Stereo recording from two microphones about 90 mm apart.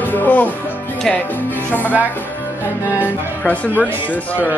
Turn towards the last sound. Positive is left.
turn(degrees=20)  # may be behind; listen again after turning